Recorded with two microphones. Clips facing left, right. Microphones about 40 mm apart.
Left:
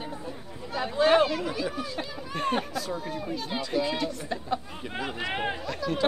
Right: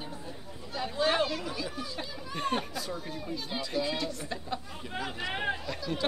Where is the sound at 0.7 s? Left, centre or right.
Centre.